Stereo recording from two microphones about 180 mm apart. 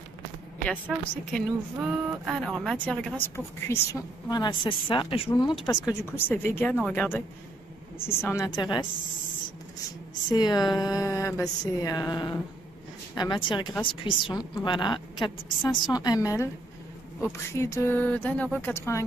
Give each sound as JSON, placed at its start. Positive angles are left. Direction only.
{"t": 1.3, "sound": "speech", "side_deg": -5}
{"t": 6.1, "sound": "speech", "side_deg": 10}
{"t": 10.3, "sound": "speech", "side_deg": 25}
{"t": 17.6, "sound": "speech", "side_deg": 15}